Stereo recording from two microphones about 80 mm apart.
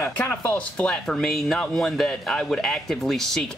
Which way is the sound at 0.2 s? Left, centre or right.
Left.